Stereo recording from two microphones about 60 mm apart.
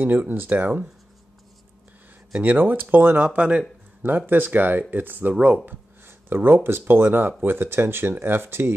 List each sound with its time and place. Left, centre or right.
0.0 s speech: right
2.4 s speech: right
3.3 s speech: right
4.3 s speech: right